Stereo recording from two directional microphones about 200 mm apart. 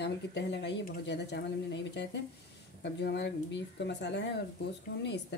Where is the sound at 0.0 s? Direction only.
60° left (ahead or behind).